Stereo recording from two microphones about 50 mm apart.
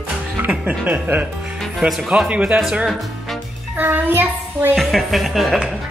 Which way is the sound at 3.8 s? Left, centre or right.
Right.